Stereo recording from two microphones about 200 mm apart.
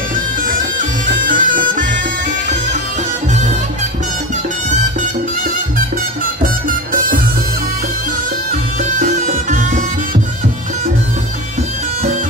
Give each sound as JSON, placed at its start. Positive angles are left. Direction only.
{"t": 0.7, "sound": "music", "side_deg": -45}
{"t": 6.4, "sound": "music", "side_deg": -45}
{"t": 9.0, "sound": "music", "side_deg": -40}